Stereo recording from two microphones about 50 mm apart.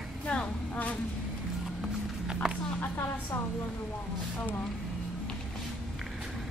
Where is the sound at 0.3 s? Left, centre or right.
Left.